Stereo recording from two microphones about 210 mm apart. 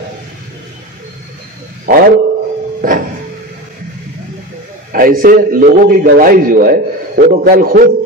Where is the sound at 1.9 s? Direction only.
45° right (ahead or behind).